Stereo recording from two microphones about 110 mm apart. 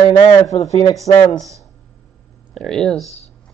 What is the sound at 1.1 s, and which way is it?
Speech, 65° left (ahead or behind).